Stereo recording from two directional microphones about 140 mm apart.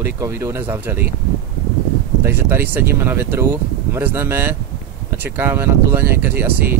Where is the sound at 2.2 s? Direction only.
15° right (ahead or behind).